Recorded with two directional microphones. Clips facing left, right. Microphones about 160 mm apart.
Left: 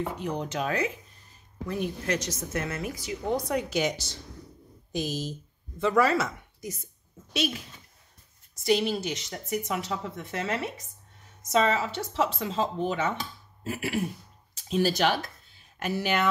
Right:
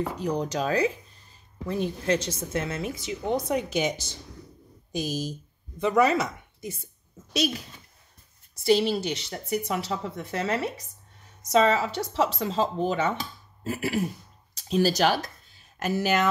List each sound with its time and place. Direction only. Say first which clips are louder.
0.2 s a woman's voice: right 3 dB; 35° right (ahead or behind); by 6.7 s 20° right (ahead or behind)
7.3 s a woman's voice: right 3 dB; 40° right (ahead or behind)
8.6 s a woman's voice: right 3 dB; 30° right (ahead or behind)